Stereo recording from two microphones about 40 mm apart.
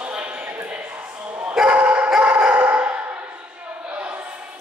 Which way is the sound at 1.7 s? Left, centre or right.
Right.